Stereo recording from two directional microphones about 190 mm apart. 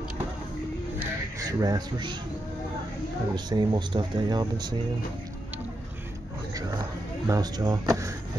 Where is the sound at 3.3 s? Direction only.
20° right (ahead or behind).